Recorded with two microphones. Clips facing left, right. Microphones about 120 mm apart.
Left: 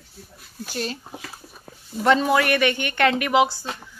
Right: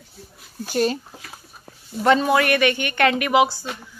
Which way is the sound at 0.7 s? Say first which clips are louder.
Right 9 dB; 50° right (ahead or behind).